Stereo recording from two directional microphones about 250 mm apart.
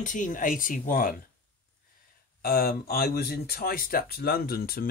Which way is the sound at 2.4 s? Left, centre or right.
Left.